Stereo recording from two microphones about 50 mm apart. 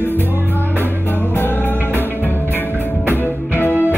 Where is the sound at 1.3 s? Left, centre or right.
Left.